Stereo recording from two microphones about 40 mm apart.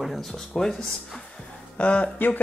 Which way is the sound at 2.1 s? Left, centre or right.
Left.